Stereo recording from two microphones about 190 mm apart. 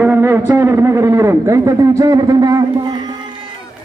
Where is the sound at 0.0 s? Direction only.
10° right (ahead or behind).